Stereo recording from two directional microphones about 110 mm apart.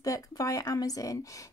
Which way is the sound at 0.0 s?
30° left (ahead or behind).